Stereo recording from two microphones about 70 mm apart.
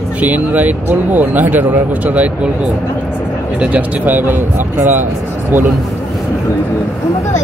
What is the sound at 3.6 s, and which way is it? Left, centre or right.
Speech, right.